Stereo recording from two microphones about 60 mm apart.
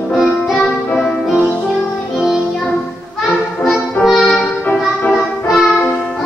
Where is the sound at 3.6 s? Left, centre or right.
Centre.